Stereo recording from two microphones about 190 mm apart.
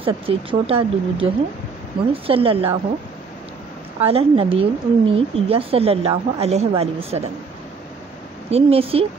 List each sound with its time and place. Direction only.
0.0 s a woman's voice: 30° right (ahead or behind)
4.0 s a woman's voice: 30° right (ahead or behind)
8.5 s a woman's voice: 30° right (ahead or behind)